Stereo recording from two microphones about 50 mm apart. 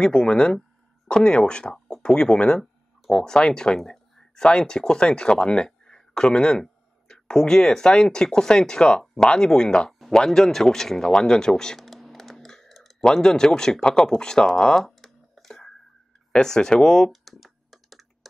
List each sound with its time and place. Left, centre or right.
0.0 s speech: centre
11.8 s a sound: centre
13.0 s speech: centre
14.8 s computer keyboard: centre
16.3 s speech: centre
17.1 s computer keyboard: centre